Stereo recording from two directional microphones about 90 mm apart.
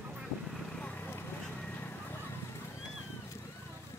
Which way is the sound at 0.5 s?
10° left (ahead or behind).